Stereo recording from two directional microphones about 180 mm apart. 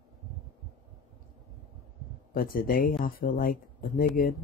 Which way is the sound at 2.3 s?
55° left (ahead or behind).